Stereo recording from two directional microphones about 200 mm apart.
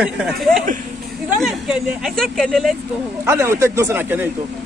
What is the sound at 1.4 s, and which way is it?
Speech, centre (ahead or behind).